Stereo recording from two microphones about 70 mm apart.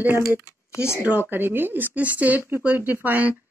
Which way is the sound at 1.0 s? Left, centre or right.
Right.